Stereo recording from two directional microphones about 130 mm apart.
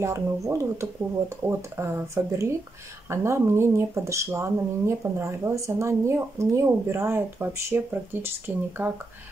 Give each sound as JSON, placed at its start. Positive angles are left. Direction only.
{"t": 0.0, "sound": "speech", "side_deg": -25}